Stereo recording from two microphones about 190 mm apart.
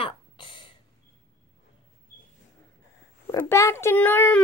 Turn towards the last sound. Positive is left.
turn(degrees=10)  # may be behind; listen again after turning